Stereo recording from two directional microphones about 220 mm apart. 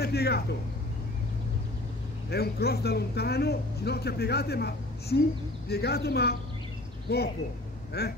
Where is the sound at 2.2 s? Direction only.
45° left (ahead or behind).